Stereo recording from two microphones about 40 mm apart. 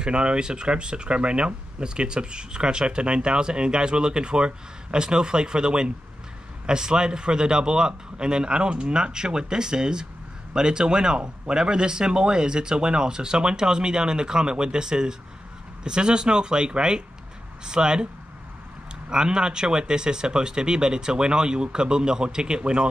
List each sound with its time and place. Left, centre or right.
0.0 s speech: right
19.0 s speech: right